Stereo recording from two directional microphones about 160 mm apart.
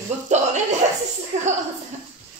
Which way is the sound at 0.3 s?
45° right (ahead or behind).